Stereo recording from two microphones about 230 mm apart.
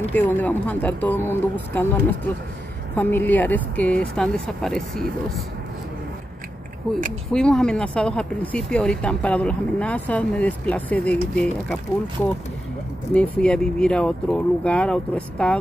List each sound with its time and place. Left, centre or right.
0.1 s speech: centre
3.0 s speech: centre
7.3 s speech: centre
13.1 s speech: centre